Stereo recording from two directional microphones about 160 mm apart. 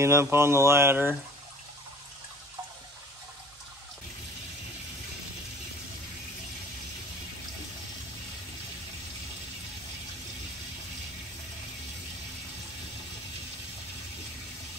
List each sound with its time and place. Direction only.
0.0 s speech: 15° right (ahead or behind)